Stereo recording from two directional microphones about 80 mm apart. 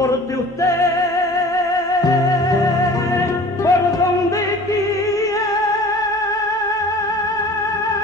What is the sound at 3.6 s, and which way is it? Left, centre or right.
Music, left.